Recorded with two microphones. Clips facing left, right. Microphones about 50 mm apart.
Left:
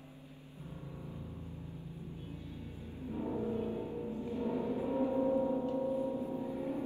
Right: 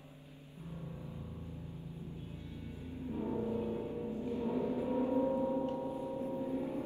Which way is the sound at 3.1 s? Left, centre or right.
Centre.